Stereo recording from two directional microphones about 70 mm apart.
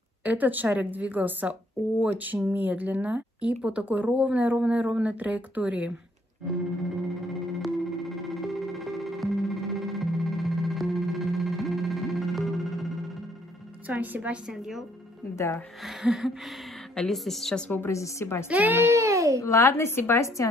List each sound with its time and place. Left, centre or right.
0.2 s speech: right
7.6 s music: centre
13.8 s speech: right
14.5 s music: centre
15.3 s a woman's voice: left
15.8 s music: centre
16.9 s a woman's voice: centre
17.2 s music: centre
17.7 s a woman's voice: left
18.5 s speech: right
18.8 s a child's voice: right
19.4 s a woman's voice: left